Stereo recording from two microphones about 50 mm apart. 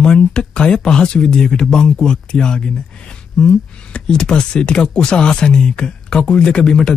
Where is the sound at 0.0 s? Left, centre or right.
Centre.